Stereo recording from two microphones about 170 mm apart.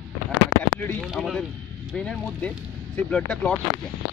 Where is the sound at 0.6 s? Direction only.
10° left (ahead or behind).